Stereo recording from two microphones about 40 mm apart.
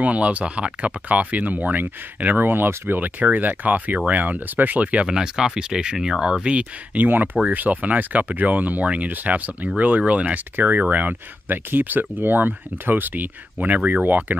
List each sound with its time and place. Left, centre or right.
0.0 s speech: right
3.2 s speech: right
5.0 s speech: centre
6.2 s speech: right
6.9 s speech: right